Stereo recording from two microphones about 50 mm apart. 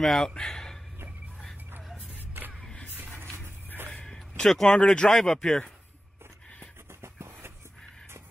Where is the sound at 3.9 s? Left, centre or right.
Centre.